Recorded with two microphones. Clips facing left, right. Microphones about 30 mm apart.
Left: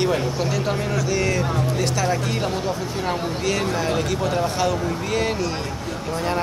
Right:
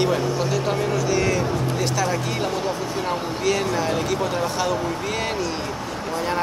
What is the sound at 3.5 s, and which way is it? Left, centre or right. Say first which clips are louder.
Speech: right 1 dB; centre.